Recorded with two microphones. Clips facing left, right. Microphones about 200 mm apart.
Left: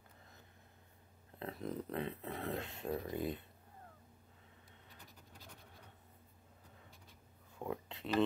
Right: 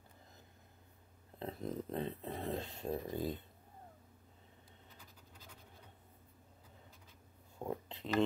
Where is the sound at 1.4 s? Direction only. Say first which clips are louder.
Right 1 dB; centre (ahead or behind).